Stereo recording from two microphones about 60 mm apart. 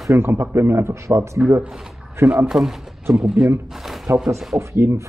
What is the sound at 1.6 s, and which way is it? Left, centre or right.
Speech, centre.